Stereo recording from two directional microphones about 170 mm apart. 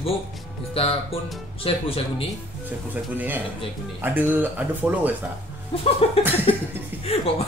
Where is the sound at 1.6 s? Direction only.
35° left (ahead or behind).